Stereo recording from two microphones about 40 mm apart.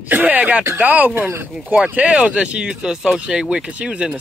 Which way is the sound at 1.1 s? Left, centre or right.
Right.